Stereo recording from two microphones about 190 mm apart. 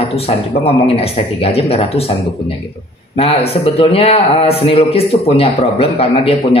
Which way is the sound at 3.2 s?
30° left (ahead or behind).